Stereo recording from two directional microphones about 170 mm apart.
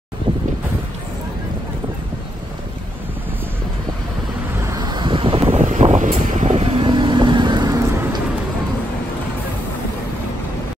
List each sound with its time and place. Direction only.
4.6 s vehicle: 20° right (ahead or behind)
5.5 s vehicle: 45° right (ahead or behind); by 8.2 s 15° right (ahead or behind)